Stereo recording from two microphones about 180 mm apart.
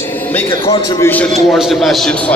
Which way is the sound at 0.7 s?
20° left (ahead or behind).